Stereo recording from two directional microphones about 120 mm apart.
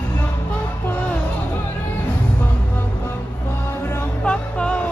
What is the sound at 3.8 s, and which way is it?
Music, 20° left (ahead or behind).